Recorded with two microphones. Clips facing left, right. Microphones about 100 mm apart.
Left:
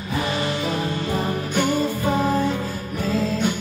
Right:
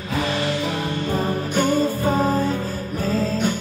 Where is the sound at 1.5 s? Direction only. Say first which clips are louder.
Right 2 dB; 40° right (ahead or behind).